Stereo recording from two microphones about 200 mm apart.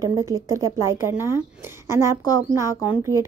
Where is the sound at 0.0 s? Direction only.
15° right (ahead or behind).